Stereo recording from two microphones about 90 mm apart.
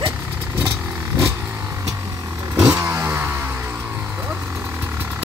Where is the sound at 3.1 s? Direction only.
20° right (ahead or behind).